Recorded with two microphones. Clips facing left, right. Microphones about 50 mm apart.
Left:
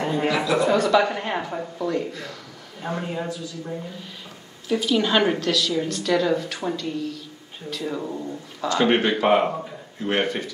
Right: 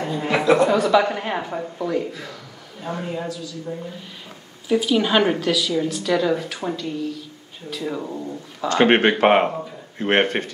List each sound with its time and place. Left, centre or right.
0.0 s speech: left
0.3 s speech: right
0.7 s speech: centre
4.6 s a woman's voice: centre
8.6 s a man's voice: right